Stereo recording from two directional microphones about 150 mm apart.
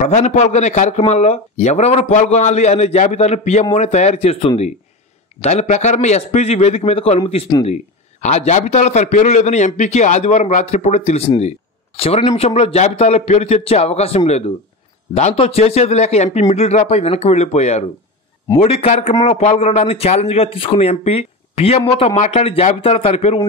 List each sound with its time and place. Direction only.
0.0 s speech: 55° left (ahead or behind); by 7.5 s 35° left (ahead or behind)
7.6 s speech: 50° left (ahead or behind)